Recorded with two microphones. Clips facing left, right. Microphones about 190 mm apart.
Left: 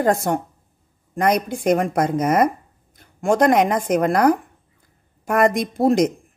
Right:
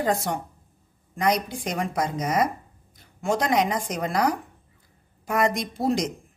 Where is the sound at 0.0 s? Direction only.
50° left (ahead or behind).